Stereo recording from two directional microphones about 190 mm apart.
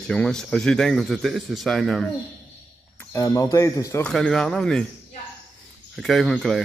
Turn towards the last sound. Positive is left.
turn(degrees=0)  # may be behind; listen again after turning